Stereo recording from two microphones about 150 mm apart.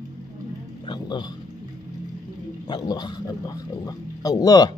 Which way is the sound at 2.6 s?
30° left (ahead or behind).